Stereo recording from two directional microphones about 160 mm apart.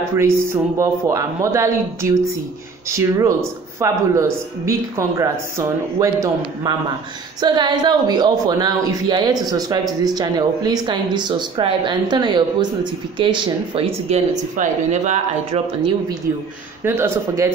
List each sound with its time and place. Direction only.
0.1 s speech: 20° right (ahead or behind); by 15.6 s 50° right (ahead or behind)
16.8 s speech: 15° right (ahead or behind)